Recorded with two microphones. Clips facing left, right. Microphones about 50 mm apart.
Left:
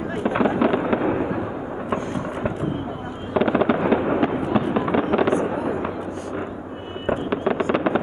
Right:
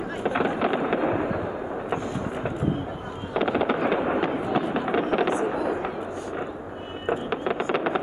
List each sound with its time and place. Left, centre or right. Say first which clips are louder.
0.3 s fireworks: left 5 dB; centre
3.3 s fireworks: left 4 dB; centre
7.1 s fireworks: left 4 dB; centre
7.6 s vehicle: left 3 dB; centre